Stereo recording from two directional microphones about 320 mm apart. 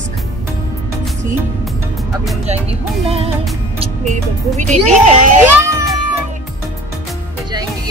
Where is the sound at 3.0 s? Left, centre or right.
Centre.